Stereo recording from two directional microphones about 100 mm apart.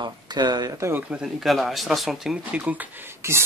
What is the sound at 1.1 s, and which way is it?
Speech, 5° right (ahead or behind).